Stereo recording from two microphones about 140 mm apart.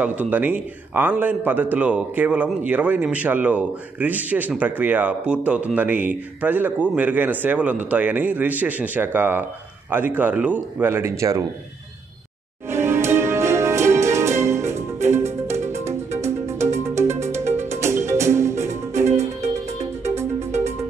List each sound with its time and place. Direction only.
0.0 s speech: 10° right (ahead or behind)
12.6 s music: 20° right (ahead or behind)